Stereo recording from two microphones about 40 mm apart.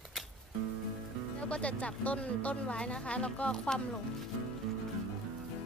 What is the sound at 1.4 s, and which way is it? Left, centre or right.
Speech, left.